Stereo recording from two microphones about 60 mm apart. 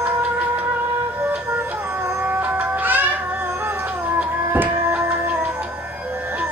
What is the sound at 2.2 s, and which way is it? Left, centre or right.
Music, right.